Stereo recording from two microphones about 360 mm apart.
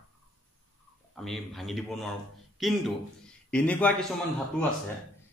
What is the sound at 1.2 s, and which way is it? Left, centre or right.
A man's voice, centre.